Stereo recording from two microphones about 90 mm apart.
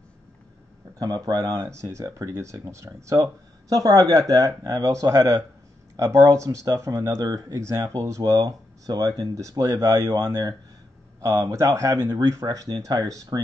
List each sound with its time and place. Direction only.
0.9 s speech: 45° right (ahead or behind); by 12.4 s 30° right (ahead or behind)
12.4 s speech: 50° right (ahead or behind)